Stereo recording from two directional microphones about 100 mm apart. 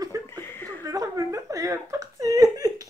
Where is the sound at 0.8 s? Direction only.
35° right (ahead or behind).